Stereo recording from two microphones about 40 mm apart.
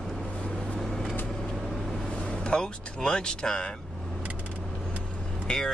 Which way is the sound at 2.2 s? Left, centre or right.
Left.